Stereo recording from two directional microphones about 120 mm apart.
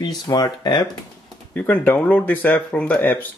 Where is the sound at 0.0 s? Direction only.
35° left (ahead or behind).